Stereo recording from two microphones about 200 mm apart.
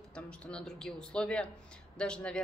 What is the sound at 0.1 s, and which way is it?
A man's voice, 5° left (ahead or behind).